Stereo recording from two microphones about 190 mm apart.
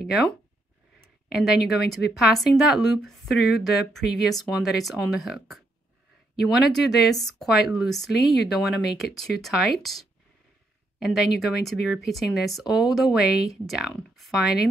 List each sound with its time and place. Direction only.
0.0 s speech: centre (ahead or behind)